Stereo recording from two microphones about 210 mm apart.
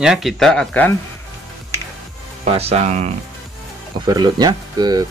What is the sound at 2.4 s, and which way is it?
Speech, 30° right (ahead or behind).